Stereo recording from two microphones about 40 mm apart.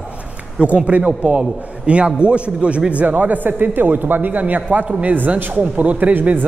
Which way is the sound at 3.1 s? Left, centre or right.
Right.